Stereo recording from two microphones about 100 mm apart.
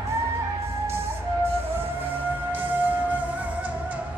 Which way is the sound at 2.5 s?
15° right (ahead or behind).